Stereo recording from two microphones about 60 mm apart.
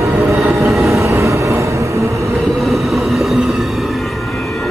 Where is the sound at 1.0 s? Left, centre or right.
Right.